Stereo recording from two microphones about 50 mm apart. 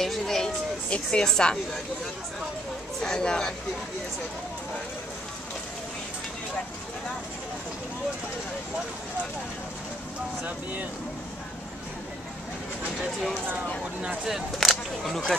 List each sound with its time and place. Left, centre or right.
0.0 s children playing: centre
0.8 s speech: centre
3.0 s speech: centre
10.4 s speech: right
14.2 s speech: centre
14.7 s speech: centre